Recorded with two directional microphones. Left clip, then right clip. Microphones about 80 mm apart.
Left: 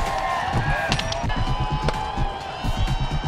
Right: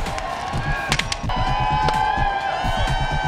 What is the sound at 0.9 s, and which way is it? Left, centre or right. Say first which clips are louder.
Music: right 2 dB; right.